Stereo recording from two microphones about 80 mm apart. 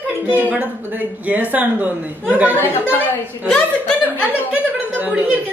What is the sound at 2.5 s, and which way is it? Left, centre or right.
Speech, left.